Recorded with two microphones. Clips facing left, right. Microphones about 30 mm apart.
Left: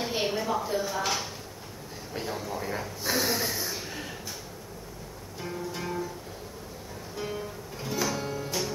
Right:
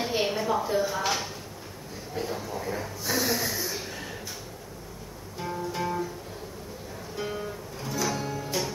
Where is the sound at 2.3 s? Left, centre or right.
Centre.